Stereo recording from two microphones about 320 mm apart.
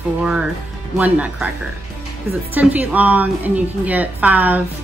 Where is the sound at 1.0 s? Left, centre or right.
Centre.